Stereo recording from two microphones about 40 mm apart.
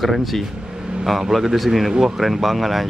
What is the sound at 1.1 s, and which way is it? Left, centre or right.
Speech, centre.